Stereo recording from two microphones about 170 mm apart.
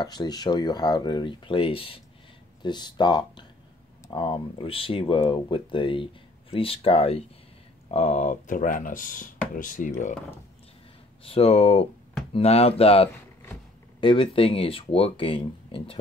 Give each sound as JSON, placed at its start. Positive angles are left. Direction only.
{"t": 0.0, "sound": "speech", "side_deg": 25}
{"t": 11.2, "sound": "speech", "side_deg": 35}